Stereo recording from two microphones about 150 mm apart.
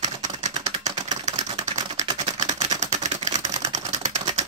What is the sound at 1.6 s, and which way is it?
Typewriter, 55° right (ahead or behind).